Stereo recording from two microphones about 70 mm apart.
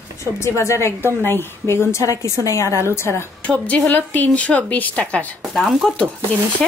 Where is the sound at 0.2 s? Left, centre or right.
Left.